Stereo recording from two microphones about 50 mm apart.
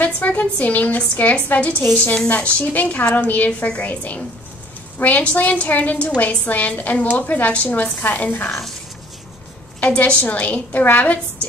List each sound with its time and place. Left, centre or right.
0.0 s a woman's voice: left
8.5 s speech: centre
9.8 s a woman's voice: left